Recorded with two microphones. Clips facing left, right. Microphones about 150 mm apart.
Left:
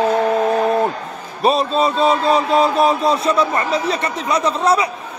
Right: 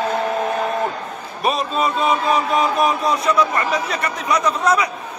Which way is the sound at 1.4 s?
30° left (ahead or behind).